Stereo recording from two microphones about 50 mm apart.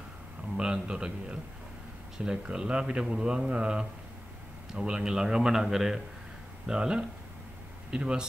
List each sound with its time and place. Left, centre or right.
0.6 s speech: centre